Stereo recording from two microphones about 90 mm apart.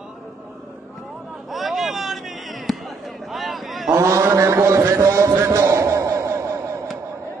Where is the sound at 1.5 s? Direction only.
Centre (ahead or behind).